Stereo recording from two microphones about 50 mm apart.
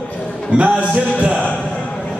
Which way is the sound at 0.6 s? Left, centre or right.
Right.